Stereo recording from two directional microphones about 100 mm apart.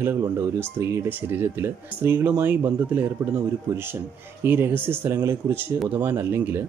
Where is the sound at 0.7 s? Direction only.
25° right (ahead or behind).